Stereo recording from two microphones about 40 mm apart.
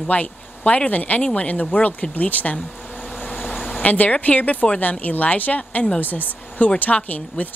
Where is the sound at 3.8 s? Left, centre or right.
Left.